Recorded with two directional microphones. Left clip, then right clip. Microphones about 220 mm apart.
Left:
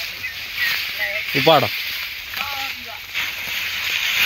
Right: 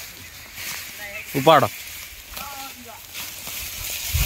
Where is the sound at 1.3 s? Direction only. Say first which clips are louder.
Even; 10° right (ahead or behind).